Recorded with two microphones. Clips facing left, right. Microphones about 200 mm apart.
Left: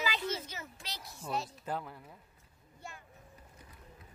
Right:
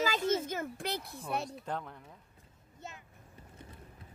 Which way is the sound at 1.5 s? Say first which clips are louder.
Even; 5° left (ahead or behind).